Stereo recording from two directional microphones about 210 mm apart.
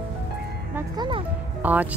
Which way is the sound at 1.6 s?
5° right (ahead or behind).